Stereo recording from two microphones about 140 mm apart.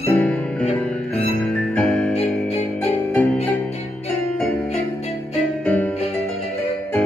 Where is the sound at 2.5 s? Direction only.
45° left (ahead or behind).